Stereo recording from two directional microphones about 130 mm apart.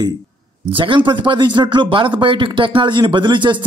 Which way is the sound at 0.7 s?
40° right (ahead or behind).